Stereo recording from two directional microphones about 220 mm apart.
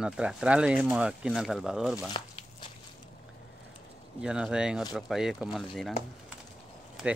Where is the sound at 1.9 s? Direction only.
20° left (ahead or behind).